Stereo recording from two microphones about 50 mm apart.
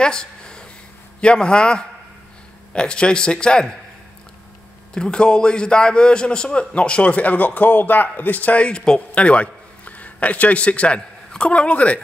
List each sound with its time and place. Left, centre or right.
0.0 s a sound: centre
1.2 s a man's voice: centre
4.9 s a man's voice: centre